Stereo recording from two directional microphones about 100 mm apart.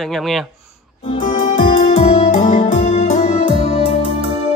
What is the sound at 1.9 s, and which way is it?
Music, 85° left.